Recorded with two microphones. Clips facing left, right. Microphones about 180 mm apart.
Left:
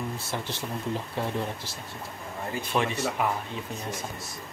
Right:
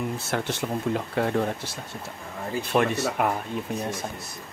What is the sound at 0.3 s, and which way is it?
Speech, 65° right (ahead or behind).